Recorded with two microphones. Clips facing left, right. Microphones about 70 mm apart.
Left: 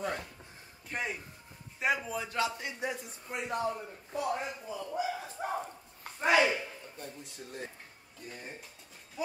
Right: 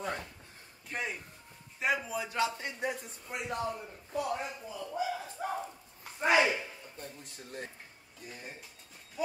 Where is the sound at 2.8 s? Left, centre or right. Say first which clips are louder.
Right 1 dB; right.